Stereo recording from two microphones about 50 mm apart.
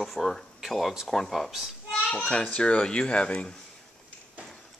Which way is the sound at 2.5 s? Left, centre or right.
Centre.